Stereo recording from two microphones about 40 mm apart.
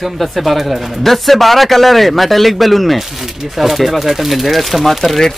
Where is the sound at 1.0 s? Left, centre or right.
Centre.